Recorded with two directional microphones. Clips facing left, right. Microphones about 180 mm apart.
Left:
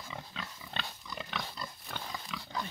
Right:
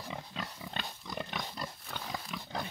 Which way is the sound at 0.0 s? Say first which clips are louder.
Right 3 dB; 40° right (ahead or behind).